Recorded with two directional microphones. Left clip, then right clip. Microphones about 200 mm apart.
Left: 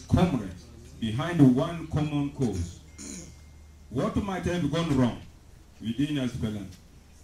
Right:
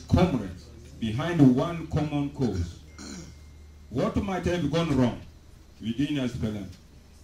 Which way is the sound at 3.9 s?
10° left (ahead or behind).